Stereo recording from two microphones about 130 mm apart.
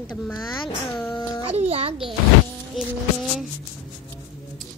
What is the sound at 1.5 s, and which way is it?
Speech, 50° right (ahead or behind).